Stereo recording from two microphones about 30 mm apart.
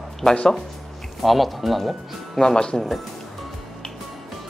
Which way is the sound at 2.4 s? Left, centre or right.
Left.